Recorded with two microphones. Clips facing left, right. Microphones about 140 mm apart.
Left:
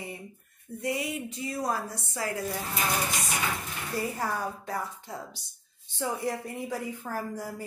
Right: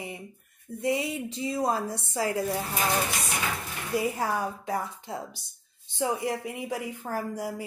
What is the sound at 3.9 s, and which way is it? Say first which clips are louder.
A woman's voice: right 4 dB; 10° right (ahead or behind).